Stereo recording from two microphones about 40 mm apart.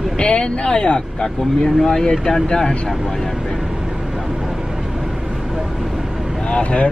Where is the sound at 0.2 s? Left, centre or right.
Left.